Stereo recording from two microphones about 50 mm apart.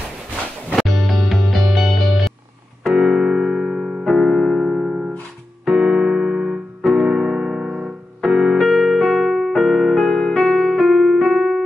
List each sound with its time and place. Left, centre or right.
0.7 s music: centre
2.8 s piano: centre
5.7 s keyboard: centre
6.8 s piano: centre
8.2 s keyboard: centre
11.1 s music: centre